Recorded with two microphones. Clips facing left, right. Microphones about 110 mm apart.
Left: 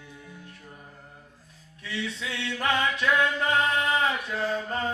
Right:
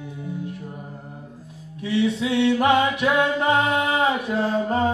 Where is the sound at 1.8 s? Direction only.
20° right (ahead or behind).